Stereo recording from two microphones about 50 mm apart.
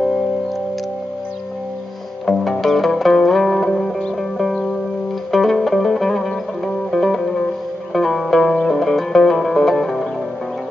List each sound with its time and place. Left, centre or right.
2.2 s music: centre
5.3 s music: centre